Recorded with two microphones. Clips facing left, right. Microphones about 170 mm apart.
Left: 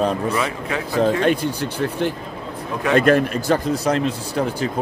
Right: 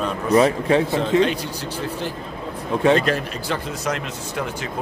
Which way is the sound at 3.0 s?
50° left (ahead or behind).